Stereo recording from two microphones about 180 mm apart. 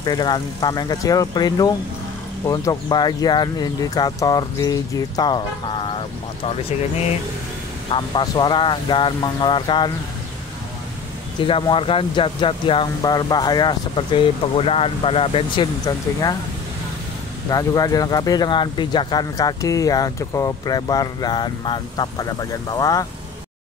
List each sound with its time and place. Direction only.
0.0 s speech: 25° left (ahead or behind)
7.9 s speech: 25° left (ahead or behind)
11.4 s speech: 30° left (ahead or behind)
17.5 s speech: 20° left (ahead or behind)